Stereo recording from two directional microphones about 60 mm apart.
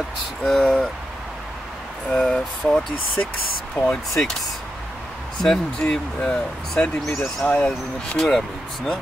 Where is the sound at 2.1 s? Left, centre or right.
Centre.